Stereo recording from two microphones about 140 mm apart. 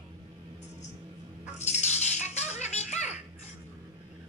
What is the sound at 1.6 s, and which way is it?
Music, 55° left (ahead or behind).